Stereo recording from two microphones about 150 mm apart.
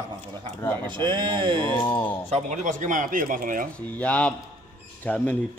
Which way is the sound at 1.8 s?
10° left (ahead or behind).